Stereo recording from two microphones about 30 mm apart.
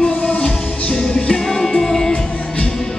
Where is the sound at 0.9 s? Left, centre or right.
Centre.